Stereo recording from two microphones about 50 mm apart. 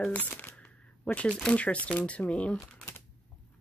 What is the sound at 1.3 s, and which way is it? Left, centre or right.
Speech, centre.